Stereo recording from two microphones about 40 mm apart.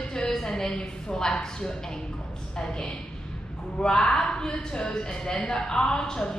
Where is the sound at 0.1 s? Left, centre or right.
Centre.